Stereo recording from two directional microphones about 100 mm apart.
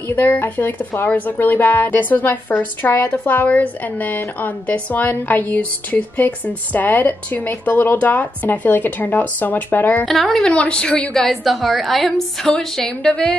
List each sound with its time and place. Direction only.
0.1 s speech: 20° left (ahead or behind)
10.0 s a woman's voice: centre (ahead or behind)
10.5 s a woman's voice: 10° left (ahead or behind)